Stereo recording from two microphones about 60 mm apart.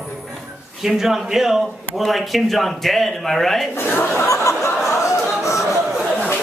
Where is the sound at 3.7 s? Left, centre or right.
Left.